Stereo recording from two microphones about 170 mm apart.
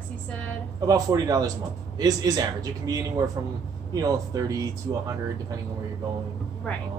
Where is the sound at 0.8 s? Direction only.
20° right (ahead or behind).